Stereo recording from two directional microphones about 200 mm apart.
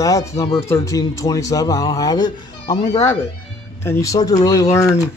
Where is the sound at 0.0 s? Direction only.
15° left (ahead or behind).